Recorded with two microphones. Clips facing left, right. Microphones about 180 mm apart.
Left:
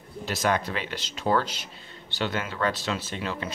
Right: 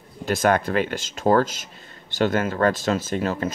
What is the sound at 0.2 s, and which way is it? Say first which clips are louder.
Speech: right 6 dB; 50° right (ahead or behind).